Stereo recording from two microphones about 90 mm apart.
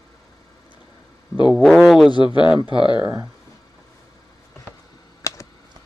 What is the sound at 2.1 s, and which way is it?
Speech, 60° left (ahead or behind).